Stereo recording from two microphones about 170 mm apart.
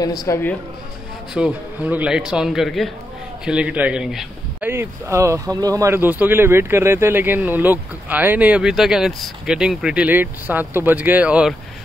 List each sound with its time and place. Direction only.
0.0 s speech: 25° left (ahead or behind)
1.3 s a man's voice: 5° right (ahead or behind)
4.6 s speech: 15° right (ahead or behind)